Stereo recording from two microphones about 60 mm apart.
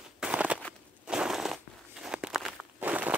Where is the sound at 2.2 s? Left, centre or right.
Centre.